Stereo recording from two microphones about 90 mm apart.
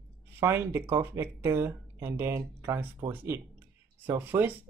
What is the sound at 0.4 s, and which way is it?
Speech, 25° right (ahead or behind).